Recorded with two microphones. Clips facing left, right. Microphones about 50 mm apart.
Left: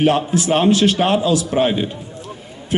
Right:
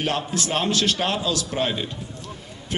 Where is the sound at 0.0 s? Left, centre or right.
Centre.